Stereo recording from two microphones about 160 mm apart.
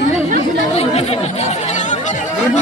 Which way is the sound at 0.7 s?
40° left (ahead or behind).